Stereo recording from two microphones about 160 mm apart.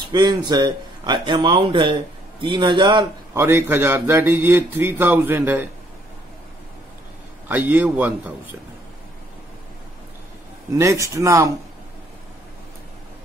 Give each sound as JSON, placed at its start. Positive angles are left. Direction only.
{"t": 0.1, "sound": "speech", "side_deg": -25}
{"t": 3.3, "sound": "speech", "side_deg": -15}
{"t": 7.4, "sound": "speech", "side_deg": -10}
{"t": 10.7, "sound": "speech", "side_deg": -20}